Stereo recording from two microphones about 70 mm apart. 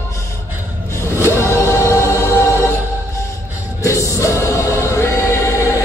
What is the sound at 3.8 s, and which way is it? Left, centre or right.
Choir, left.